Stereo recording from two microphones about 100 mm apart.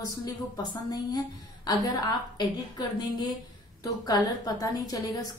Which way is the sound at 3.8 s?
40° left (ahead or behind).